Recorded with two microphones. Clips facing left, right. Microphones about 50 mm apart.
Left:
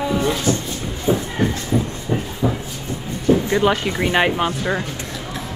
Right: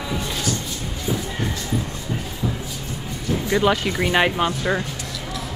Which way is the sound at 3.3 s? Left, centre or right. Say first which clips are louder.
Left 9 dB; left.